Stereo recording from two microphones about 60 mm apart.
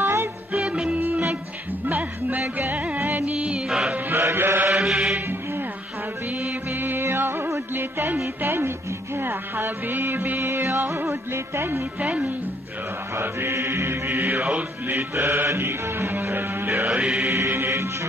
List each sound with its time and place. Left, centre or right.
0.0 s music: right
0.9 s music: right
3.0 s music: right
3.3 s music: centre
4.1 s music: right
4.7 s music: centre
6.7 s music: right
12.0 s speech: right
13.1 s music: right